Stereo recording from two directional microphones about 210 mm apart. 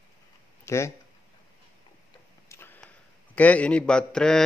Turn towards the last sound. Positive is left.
turn(degrees=5)  # may be behind; listen again after turning